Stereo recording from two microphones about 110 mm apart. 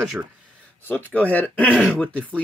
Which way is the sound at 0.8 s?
15° left (ahead or behind).